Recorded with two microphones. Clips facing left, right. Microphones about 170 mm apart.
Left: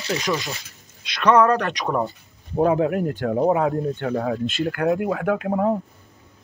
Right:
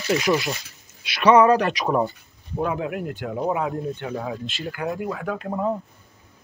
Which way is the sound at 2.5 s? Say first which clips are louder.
Left 7 dB; 35° left (ahead or behind).